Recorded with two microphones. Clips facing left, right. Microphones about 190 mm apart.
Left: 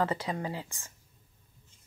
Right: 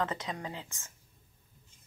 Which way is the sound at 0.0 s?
10° left (ahead or behind).